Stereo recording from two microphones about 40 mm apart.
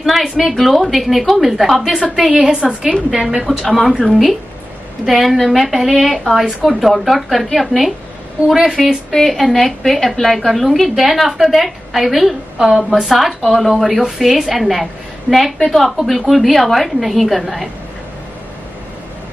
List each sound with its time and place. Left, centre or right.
0.0 s a woman's voice: centre
3.6 s a woman's voice: centre
9.1 s a woman's voice: centre
12.5 s a woman's voice: centre
13.0 s a woman's voice: centre